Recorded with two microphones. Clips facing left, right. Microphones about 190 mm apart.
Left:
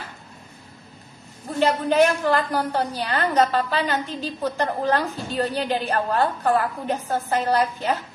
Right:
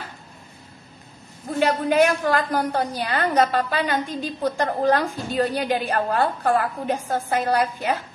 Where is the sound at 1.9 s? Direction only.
15° right (ahead or behind).